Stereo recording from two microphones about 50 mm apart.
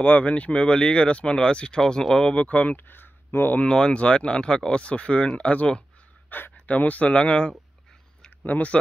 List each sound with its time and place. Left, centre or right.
0.0 s speech: left; by 2.3 s centre
2.3 s speech: left
2.9 s a sound: left
3.6 s speech: centre
8.5 s speech: left